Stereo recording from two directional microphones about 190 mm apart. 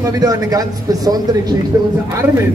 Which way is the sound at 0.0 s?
20° right (ahead or behind).